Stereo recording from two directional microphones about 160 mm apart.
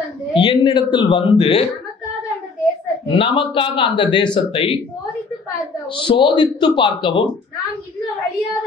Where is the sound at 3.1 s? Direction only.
35° left (ahead or behind).